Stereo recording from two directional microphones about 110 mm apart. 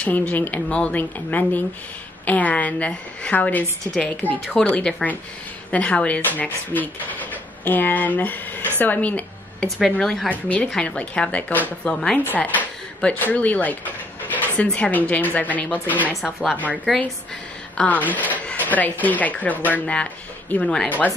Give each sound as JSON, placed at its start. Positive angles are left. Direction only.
{"t": 0.0, "sound": "a woman's voice", "side_deg": 10}
{"t": 16.1, "sound": "a woman's voice", "side_deg": 0}
{"t": 17.7, "sound": "speech", "side_deg": 15}